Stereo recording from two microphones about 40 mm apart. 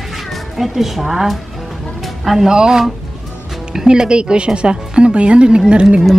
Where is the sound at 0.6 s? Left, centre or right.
Centre; by 6.0 s right.